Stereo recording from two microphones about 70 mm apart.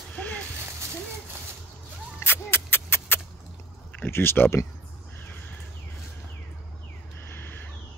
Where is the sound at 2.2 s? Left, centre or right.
Left.